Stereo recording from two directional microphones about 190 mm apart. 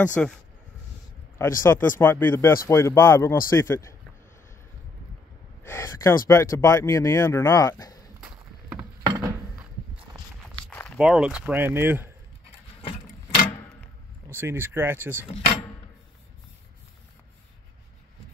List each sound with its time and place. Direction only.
0.0 s speech: 5° left (ahead or behind)
1.6 s speech: 10° left (ahead or behind)
5.6 s speech: 15° left (ahead or behind)
8.7 s a sound: 20° right (ahead or behind)
10.7 s a sound: 10° left (ahead or behind)
11.0 s speech: 5° right (ahead or behind)
14.3 s speech: 10° right (ahead or behind)